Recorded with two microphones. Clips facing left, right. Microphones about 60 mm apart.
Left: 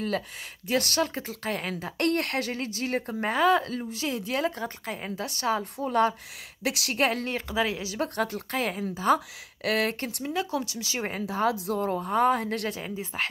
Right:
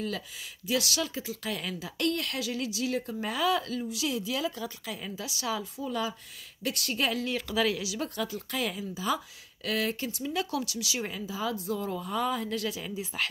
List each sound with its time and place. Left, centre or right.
0.7 s speech: left
5.8 s a woman's voice: left
7.3 s speech: left
7.8 s speech: left
8.5 s speech: left
10.3 s speech: left
11.2 s a woman's voice: left
11.8 s speech: left
12.8 s speech: left